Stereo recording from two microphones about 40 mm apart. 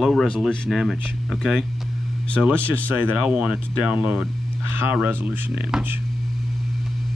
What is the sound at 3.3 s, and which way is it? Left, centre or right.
Speech, right.